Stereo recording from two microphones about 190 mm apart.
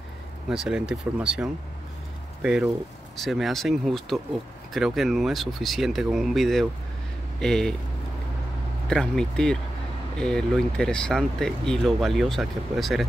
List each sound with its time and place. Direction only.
0.5 s speech: 5° right (ahead or behind)
8.8 s speech: 5° left (ahead or behind)